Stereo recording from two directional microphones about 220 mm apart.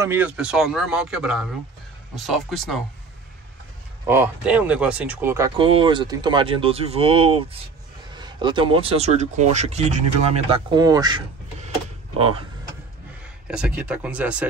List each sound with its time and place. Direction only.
0.0 s a man's voice: 10° right (ahead or behind)
4.0 s speech: 10° right (ahead or behind)
13.5 s a man's voice: 5° right (ahead or behind)